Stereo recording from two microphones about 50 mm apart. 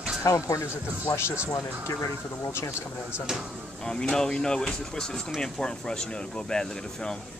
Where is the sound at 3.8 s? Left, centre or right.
Centre.